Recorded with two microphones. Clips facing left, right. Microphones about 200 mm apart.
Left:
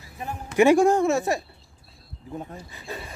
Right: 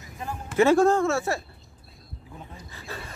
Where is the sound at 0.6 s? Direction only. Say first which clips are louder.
Left 2 dB; 15° left (ahead or behind).